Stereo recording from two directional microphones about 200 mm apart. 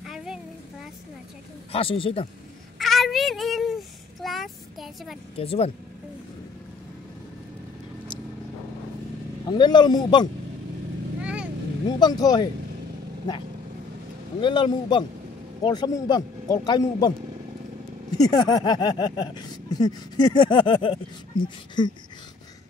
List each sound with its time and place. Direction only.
0.0 s a sound: centre (ahead or behind)
1.7 s speech: 25° left (ahead or behind)
2.8 s child singing: centre (ahead or behind)
5.4 s speech: 30° left (ahead or behind)
9.5 s speech: 20° left (ahead or behind)
11.1 s vehicle: 5° right (ahead or behind)
12.0 s speech: 20° left (ahead or behind)
14.4 s speech: 25° left (ahead or behind)
18.1 s speech: 20° left (ahead or behind)